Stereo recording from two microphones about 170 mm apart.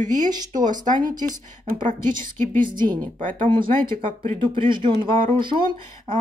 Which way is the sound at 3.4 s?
30° right (ahead or behind).